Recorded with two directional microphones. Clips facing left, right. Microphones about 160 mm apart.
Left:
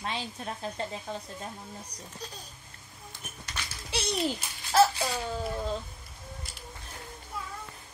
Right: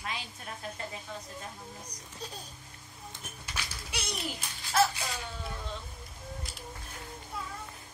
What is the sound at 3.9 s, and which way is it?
A child's voice, 30° left (ahead or behind).